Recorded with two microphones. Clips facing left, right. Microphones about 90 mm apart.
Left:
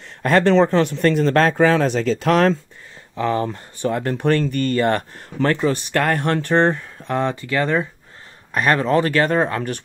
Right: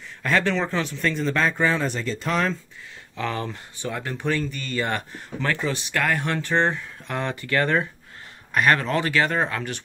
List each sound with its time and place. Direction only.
0.2 s speech: 50° left (ahead or behind); by 1.5 s 65° left (ahead or behind)
1.6 s speech: 90° left
3.2 s speech: 30° left (ahead or behind); by 6.8 s 50° left (ahead or behind)
7.1 s speech: 25° left (ahead or behind)
8.5 s speech: 30° left (ahead or behind)